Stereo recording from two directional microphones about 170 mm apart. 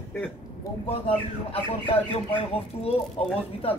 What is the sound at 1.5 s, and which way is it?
Speech, 35° left (ahead or behind).